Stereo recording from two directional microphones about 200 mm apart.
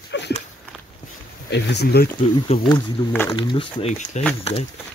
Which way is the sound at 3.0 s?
20° left (ahead or behind).